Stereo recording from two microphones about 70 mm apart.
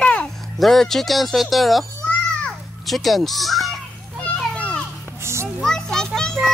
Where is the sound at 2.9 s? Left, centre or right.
Centre.